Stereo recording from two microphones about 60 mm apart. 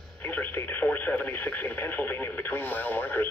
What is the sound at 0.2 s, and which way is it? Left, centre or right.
Speech, left.